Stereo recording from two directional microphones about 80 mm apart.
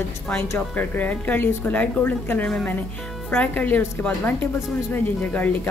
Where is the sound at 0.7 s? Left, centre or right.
Centre.